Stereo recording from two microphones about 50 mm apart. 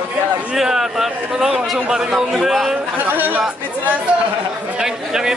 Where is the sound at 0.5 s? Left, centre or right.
Centre.